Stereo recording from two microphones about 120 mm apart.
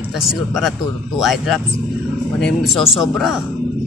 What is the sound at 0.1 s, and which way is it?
Speech, centre (ahead or behind).